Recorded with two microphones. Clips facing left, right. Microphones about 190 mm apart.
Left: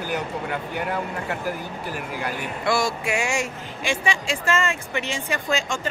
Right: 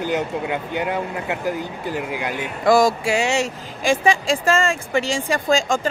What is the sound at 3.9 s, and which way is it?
Speech, 35° right (ahead or behind).